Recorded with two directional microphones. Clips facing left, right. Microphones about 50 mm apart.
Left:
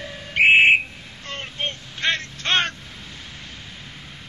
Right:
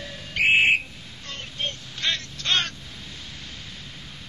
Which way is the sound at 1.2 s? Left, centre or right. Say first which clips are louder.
Left 3 dB; left.